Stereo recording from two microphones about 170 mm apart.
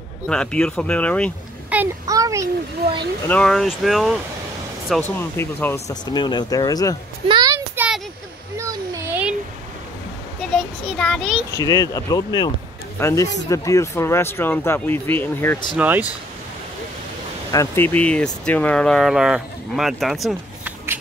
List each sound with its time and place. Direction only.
0.3 s speech: 5° left (ahead or behind)
1.7 s child singing: 10° right (ahead or behind)
2.0 s a sound: 20° right (ahead or behind)
3.3 s speech: 5° left (ahead or behind)
5.3 s speech: 15° left (ahead or behind)
7.2 s a sound: 25° right (ahead or behind)
7.7 s a sound: 10° right (ahead or behind)
8.5 s a sound: 20° right (ahead or behind)
10.5 s speech: centre (ahead or behind)
11.5 s speech: 20° left (ahead or behind)
15.7 s speech: 10° right (ahead or behind)
17.5 s speech: 15° left (ahead or behind); by 20.7 s centre (ahead or behind)